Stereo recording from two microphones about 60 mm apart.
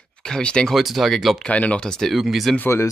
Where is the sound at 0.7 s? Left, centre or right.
Centre.